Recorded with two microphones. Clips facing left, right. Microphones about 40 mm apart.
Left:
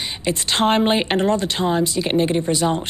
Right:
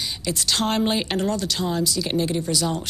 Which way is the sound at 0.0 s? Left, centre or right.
Left.